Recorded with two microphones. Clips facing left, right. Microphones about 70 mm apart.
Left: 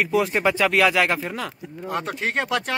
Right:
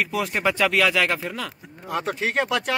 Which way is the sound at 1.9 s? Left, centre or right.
Centre.